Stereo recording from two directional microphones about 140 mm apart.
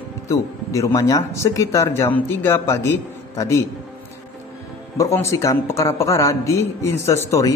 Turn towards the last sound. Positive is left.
turn(degrees=20)  # may be behind; listen again after turning